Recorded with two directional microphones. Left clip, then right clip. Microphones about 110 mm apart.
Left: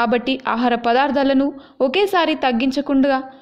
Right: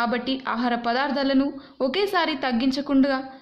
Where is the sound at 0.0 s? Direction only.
45° left (ahead or behind).